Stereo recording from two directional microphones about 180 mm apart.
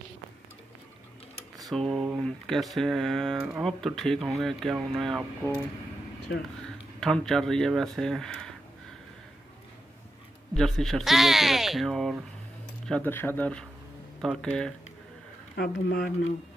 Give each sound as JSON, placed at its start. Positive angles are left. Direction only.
{"t": 1.6, "sound": "a sound", "side_deg": 0}
{"t": 2.0, "sound": "speech", "side_deg": 0}
{"t": 7.0, "sound": "speech", "side_deg": 5}
{"t": 10.5, "sound": "speech", "side_deg": 0}
{"t": 15.5, "sound": "speech", "side_deg": 60}